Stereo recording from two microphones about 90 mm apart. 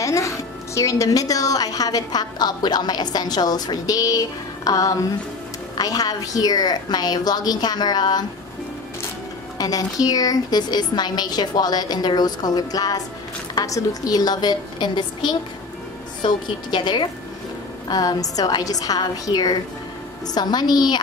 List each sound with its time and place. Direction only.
0.0 s a woman's voice: 35° left (ahead or behind)
9.6 s a woman's voice: 45° left (ahead or behind)
17.8 s a woman's voice: 45° left (ahead or behind)